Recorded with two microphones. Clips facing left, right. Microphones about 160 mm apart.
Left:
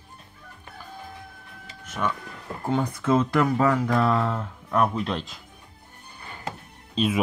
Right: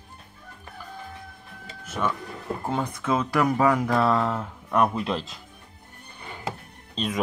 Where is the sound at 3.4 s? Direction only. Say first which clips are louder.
Even; 10° right (ahead or behind).